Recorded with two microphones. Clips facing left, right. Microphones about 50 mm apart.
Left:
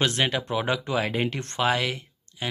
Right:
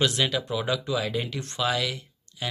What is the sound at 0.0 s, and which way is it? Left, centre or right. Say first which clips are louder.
Speech: even; left.